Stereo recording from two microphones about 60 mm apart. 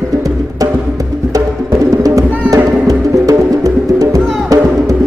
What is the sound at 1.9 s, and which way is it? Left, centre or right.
Music, right.